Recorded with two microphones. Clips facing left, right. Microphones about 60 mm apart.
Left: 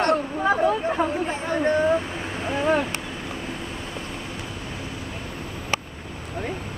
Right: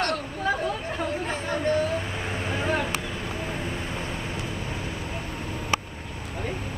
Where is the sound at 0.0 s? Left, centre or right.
Left.